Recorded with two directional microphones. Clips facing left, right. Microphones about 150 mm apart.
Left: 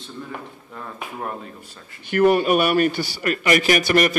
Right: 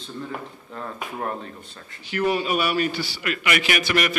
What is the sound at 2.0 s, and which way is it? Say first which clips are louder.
A man's voice: left 7 dB; 55° left (ahead or behind).